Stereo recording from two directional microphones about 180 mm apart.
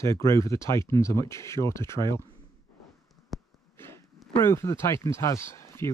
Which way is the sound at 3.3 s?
Centre (ahead or behind).